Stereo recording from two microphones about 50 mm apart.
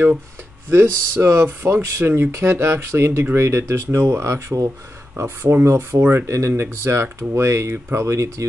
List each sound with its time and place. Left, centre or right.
0.7 s speech: right
5.1 s speech: right
5.7 s speech: right